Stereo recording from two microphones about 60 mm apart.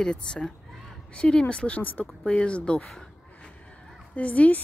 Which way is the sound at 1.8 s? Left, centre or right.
Left.